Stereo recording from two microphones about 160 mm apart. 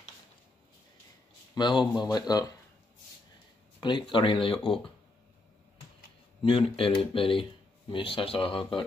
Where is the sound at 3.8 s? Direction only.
30° left (ahead or behind).